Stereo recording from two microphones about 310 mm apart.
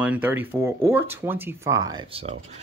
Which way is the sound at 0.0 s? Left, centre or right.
Centre.